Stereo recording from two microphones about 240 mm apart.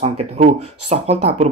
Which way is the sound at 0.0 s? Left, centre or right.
Right.